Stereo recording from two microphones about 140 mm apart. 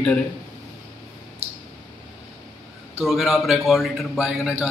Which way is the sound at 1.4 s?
45° right (ahead or behind).